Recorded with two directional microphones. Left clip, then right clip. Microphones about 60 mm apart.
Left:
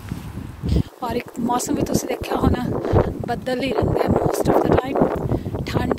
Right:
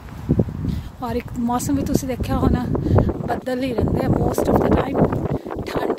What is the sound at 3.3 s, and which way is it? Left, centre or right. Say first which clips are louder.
Speech: even; right.